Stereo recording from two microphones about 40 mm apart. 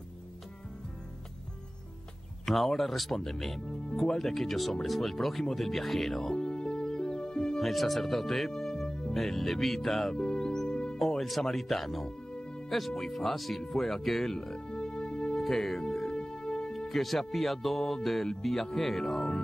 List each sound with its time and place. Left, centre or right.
2.4 s speech: centre
3.6 s music: left
3.9 s speech: centre
5.5 s music: centre
7.6 s speech: centre
9.1 s speech: centre
10.1 s music: centre
11.0 s speech: centre
12.3 s music: centre
12.6 s speech: centre; by 15.4 s left
15.4 s speech: centre
15.8 s music: centre
18.4 s speech: centre